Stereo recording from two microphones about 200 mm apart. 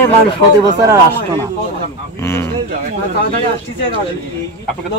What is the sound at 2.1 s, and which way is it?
Speech, 15° left (ahead or behind).